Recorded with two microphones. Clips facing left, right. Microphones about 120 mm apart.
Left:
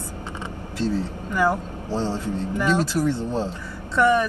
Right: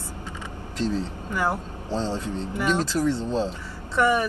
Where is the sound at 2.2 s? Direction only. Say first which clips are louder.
Left 2 dB; 20° right (ahead or behind).